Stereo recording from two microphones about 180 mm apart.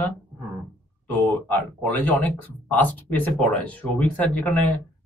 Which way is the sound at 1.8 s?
10° left (ahead or behind).